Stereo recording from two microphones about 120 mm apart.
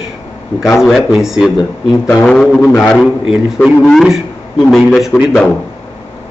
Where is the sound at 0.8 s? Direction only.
Centre (ahead or behind).